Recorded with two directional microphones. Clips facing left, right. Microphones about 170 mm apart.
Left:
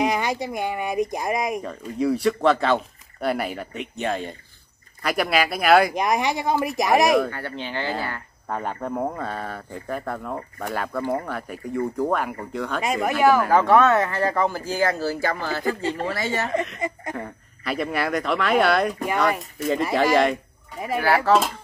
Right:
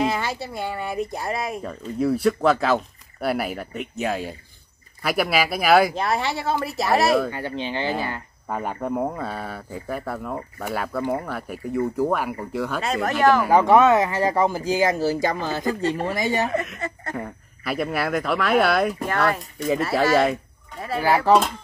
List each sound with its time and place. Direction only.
0.0 s speech: 15° left (ahead or behind)
2.0 s speech: centre (ahead or behind)
5.9 s speech: 15° left (ahead or behind)
7.2 s speech: 15° right (ahead or behind)
12.8 s speech: 10° left (ahead or behind)
13.4 s speech: 15° right (ahead or behind)
16.8 s speech: 15° left (ahead or behind)
17.2 s speech: 5° right (ahead or behind)
19.0 s speech: 15° left (ahead or behind)
19.3 s speech: centre (ahead or behind)